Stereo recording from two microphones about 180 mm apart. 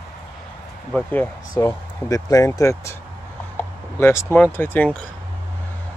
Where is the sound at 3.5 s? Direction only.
15° left (ahead or behind).